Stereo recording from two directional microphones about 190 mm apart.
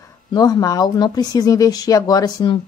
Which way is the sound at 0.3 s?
20° left (ahead or behind).